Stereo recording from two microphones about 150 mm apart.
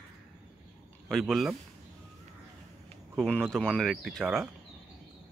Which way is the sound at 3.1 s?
5° left (ahead or behind).